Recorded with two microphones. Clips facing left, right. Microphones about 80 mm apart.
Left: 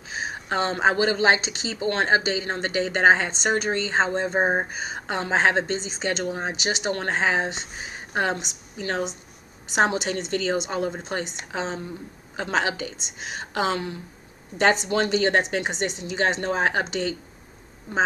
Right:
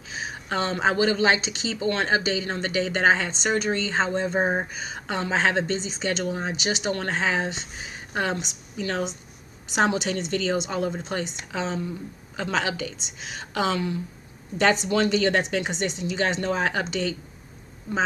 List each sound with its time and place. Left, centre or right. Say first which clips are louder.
0.1 s a woman's voice: left 2 dB; left